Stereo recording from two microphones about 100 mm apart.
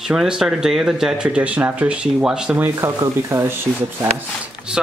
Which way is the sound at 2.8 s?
30° right (ahead or behind).